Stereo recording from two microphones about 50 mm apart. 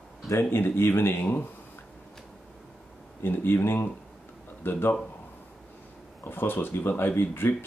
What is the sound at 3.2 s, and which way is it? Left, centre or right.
Speech, left.